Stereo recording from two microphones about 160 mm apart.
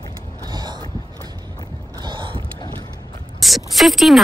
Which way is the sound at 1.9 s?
30° right (ahead or behind).